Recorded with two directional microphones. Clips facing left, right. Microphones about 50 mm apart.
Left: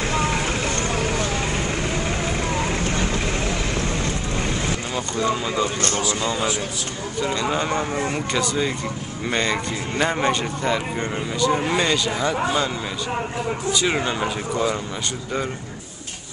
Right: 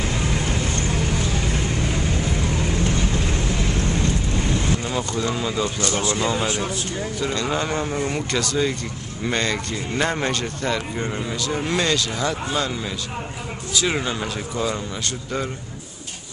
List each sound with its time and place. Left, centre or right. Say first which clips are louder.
5.1 s speech: left 5 dB; centre
5.9 s speech: right 1 dB; right
7.2 s speech: left 2 dB; centre
13.7 s speech: right 1 dB; centre